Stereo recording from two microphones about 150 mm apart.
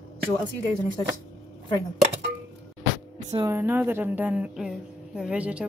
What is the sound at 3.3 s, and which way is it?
Speech, 25° right (ahead or behind).